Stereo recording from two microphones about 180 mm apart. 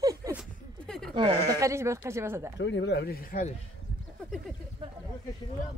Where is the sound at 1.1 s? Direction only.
25° right (ahead or behind).